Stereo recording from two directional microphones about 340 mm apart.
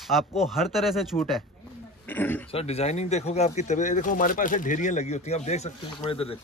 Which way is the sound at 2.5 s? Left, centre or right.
Centre.